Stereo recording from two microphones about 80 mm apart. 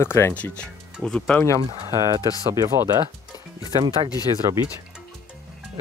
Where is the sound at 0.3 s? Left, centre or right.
Centre.